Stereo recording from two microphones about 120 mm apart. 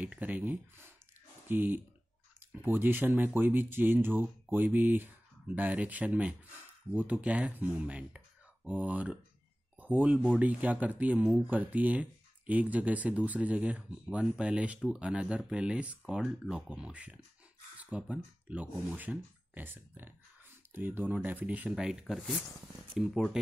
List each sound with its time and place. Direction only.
0.0 s speech: 15° right (ahead or behind)